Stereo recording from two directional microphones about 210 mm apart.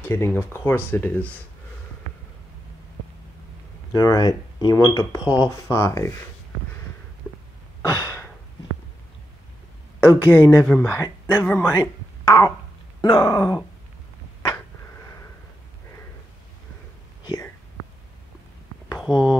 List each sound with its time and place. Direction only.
0.0 s speech: 10° left (ahead or behind)
3.9 s speech: 20° left (ahead or behind)
7.8 s a sound: 15° left (ahead or behind)
9.9 s speech: 10° left (ahead or behind)
17.2 s whispering: 20° left (ahead or behind)
18.9 s speech: 5° right (ahead or behind)